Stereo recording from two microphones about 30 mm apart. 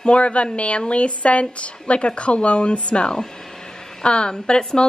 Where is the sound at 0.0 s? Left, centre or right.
Left.